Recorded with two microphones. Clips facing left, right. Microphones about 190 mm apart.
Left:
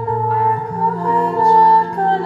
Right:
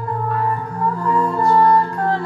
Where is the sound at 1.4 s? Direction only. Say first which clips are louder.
Left 2 dB; 30° left (ahead or behind).